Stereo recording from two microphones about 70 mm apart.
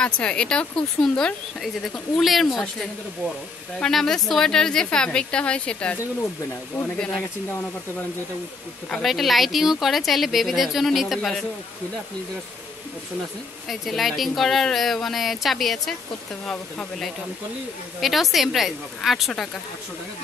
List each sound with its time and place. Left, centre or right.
0.0 s a woman's voice: centre
3.8 s a woman's voice: centre
9.0 s speech: centre
13.7 s a woman's voice: centre